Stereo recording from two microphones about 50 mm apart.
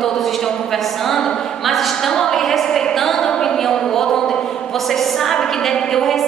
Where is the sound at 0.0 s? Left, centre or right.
Centre.